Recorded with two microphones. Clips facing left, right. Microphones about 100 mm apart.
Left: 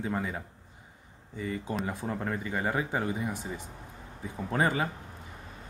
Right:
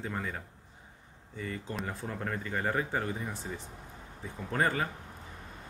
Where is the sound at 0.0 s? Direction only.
15° left (ahead or behind).